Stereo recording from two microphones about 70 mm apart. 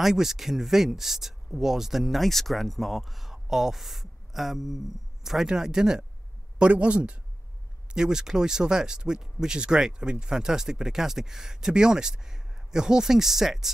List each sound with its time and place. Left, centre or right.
0.0 s speech: centre